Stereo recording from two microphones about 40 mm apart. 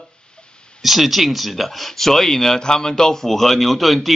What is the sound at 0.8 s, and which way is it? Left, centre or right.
Speech, centre.